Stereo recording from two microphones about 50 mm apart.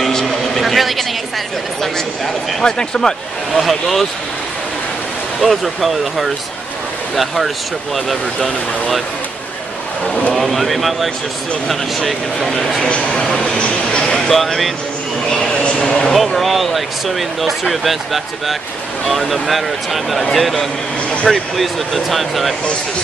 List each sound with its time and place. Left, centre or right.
0.0 s a sound: centre
2.6 s speech: centre
3.5 s speech: centre
5.4 s speech: centre
10.3 s speech: centre
12.9 s speech: centre
14.1 s speech: centre
15.5 s speech: left
16.1 s speech: centre